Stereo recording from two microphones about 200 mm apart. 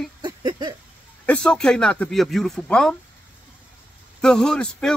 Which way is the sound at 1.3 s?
5° left (ahead or behind).